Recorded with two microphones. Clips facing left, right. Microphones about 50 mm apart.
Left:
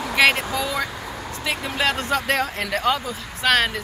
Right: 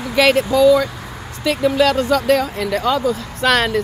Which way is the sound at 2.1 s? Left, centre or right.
Left.